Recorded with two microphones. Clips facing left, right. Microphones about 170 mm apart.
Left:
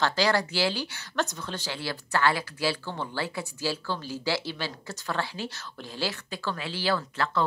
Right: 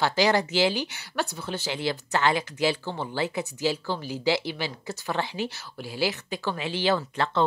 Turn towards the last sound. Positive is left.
turn(degrees=-20)  # may be behind; listen again after turning